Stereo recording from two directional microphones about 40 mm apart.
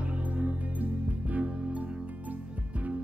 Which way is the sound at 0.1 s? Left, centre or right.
Right.